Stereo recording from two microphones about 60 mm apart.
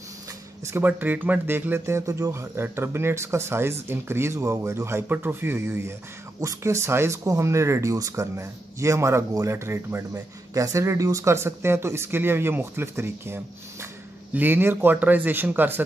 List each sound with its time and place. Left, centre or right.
0.8 s a man's voice: right
1.9 s speech: right
5.0 s a man's voice: right
5.7 s speech: right
10.5 s speech: right
14.3 s a man's voice: right